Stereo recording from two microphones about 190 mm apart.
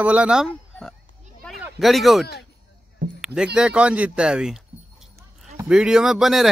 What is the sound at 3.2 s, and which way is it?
Speech, 5° right (ahead or behind).